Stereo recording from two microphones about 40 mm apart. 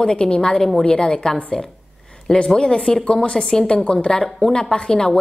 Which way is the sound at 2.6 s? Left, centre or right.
Left.